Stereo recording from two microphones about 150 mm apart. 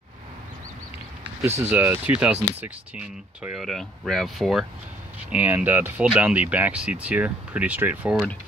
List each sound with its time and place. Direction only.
1.4 s speech: 45° right (ahead or behind)
1.7 s speech: 15° right (ahead or behind)
3.4 s speech: centre (ahead or behind)